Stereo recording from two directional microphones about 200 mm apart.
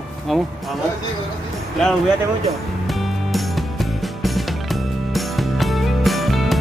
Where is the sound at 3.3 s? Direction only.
Centre (ahead or behind).